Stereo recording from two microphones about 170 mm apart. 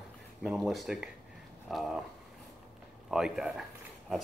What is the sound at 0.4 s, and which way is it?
Speech, 5° right (ahead or behind).